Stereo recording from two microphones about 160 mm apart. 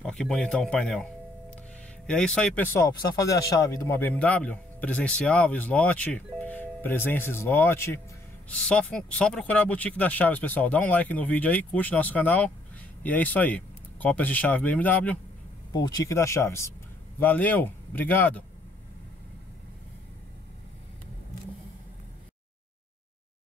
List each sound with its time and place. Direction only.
0.0 s a man's voice: 5° left (ahead or behind)
2.0 s a man's voice: 5° left (ahead or behind)
15.7 s a man's voice: 25° left (ahead or behind)